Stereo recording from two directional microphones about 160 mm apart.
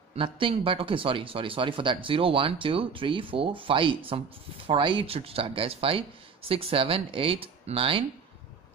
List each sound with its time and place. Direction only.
0.1 s speech: 35° right (ahead or behind)